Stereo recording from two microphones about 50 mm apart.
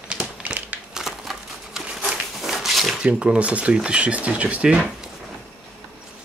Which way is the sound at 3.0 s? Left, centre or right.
Right.